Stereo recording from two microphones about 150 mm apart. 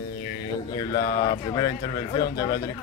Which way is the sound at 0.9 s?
25° left (ahead or behind).